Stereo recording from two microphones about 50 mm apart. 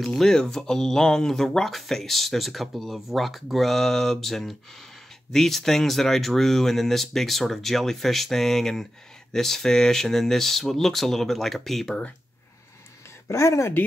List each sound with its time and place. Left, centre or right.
0.0 s speech: centre
13.3 s speech: left